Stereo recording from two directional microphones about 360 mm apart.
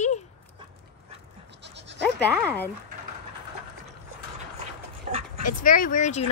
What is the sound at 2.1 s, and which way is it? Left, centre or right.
Speech, centre.